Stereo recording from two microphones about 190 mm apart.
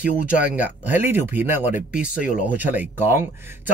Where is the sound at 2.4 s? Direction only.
10° right (ahead or behind).